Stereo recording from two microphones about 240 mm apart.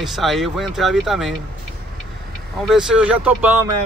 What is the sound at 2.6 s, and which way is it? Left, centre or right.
Speech, centre.